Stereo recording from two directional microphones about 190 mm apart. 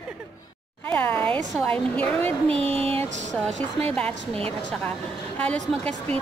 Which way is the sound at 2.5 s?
30° right (ahead or behind).